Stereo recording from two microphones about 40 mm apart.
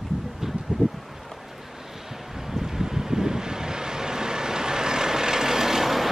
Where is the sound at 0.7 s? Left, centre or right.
Right.